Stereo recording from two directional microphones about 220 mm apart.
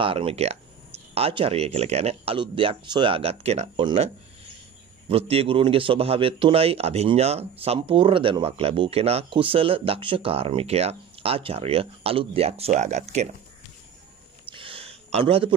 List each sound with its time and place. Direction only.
0.0 s speech: 25° right (ahead or behind)
5.1 s speech: 25° right (ahead or behind)
14.5 s a sound: 25° right (ahead or behind)